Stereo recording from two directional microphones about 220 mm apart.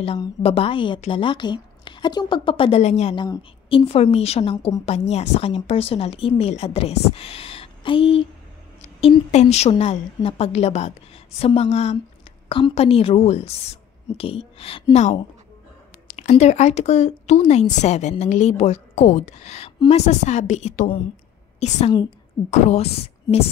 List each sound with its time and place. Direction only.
0.0 s a woman's voice: 25° left (ahead or behind)